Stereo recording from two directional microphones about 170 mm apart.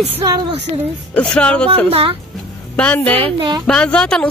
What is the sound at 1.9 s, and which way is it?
Speech, 35° right (ahead or behind).